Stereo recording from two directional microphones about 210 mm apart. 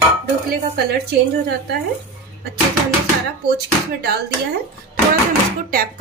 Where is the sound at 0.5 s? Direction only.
50° right (ahead or behind).